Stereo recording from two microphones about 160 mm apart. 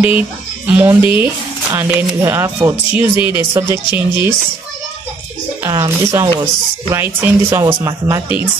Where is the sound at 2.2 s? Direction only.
15° right (ahead or behind).